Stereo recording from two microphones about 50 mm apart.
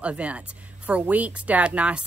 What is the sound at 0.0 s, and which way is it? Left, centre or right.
Speech, right.